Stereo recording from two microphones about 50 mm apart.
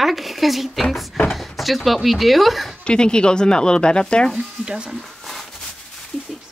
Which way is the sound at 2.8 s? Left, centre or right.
Centre.